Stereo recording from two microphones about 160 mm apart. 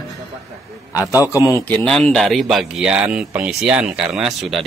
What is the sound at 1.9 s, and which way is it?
Speech, 5° left (ahead or behind).